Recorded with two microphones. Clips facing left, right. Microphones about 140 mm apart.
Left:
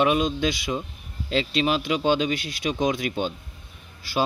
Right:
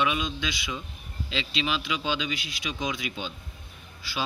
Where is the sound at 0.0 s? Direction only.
45° left (ahead or behind).